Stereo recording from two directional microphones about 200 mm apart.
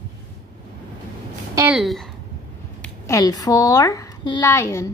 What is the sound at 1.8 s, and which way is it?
Speech, centre (ahead or behind).